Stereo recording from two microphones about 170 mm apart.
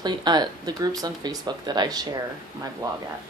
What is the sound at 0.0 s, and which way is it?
Speech, 25° right (ahead or behind).